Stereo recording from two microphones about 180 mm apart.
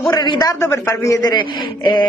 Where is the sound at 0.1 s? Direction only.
25° left (ahead or behind).